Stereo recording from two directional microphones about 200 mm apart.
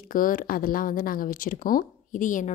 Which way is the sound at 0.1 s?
45° left (ahead or behind).